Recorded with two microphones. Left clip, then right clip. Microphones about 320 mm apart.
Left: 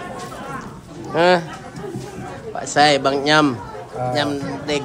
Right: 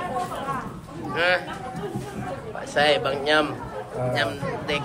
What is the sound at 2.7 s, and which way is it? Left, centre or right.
Speech, centre.